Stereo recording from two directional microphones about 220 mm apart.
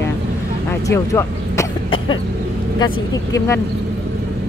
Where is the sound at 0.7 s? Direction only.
15° left (ahead or behind).